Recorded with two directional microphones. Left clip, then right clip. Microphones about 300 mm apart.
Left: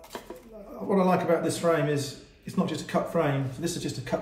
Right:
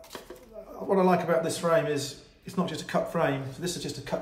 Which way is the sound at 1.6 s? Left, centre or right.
Centre.